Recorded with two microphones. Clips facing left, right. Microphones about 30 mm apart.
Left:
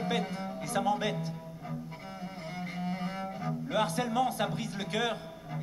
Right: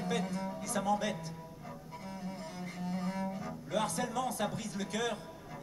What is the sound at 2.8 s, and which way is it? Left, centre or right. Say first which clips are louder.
Speech: right 1 dB; left.